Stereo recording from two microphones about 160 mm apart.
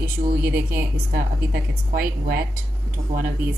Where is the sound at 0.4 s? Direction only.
70° right (ahead or behind).